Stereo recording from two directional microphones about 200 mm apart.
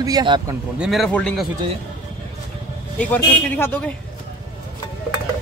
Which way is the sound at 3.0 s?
10° left (ahead or behind).